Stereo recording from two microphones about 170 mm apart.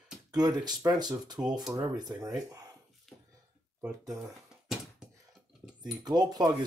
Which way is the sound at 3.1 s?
Centre (ahead or behind).